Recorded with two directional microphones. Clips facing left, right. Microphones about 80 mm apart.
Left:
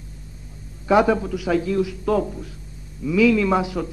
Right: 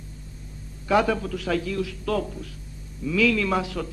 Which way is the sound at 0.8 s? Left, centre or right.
Centre.